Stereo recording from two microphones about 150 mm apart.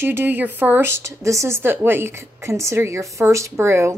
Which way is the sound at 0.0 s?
15° right (ahead or behind).